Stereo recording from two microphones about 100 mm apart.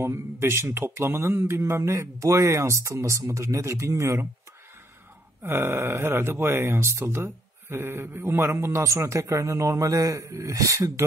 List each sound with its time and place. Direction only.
0.0 s speech: 25° right (ahead or behind)
5.4 s speech: 25° right (ahead or behind)